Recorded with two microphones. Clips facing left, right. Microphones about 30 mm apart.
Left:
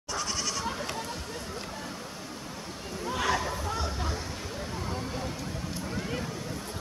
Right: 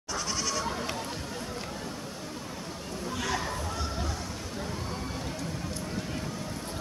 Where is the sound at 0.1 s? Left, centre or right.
Centre.